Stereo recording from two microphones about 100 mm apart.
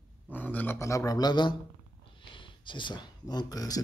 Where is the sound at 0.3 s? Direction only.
15° left (ahead or behind).